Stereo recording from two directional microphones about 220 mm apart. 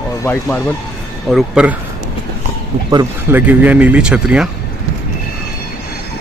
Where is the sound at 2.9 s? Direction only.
10° right (ahead or behind).